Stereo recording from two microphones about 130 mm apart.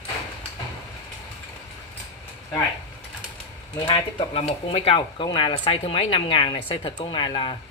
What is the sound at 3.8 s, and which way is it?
Speech, 40° left (ahead or behind).